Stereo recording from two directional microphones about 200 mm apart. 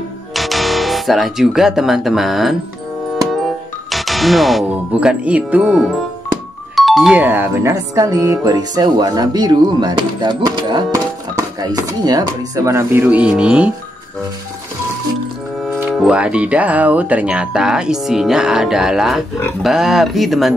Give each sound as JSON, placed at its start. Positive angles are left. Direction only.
{"t": 0.3, "sound": "speech", "side_deg": 0}
{"t": 15.6, "sound": "speech", "side_deg": 0}